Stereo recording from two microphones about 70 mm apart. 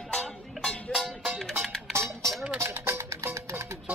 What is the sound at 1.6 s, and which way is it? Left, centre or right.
Music, centre.